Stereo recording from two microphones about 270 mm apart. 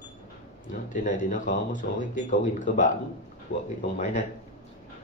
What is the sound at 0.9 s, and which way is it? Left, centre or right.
Speech, left.